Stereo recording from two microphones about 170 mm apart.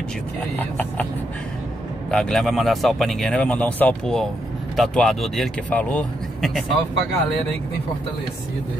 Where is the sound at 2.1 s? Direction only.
Centre (ahead or behind).